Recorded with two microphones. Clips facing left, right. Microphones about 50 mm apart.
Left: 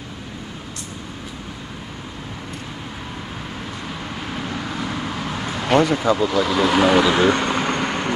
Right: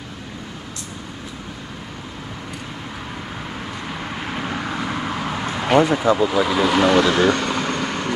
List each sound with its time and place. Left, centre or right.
4.1 s vehicle: right; by 6.7 s centre
6.7 s speech: centre
7.0 s vehicle: centre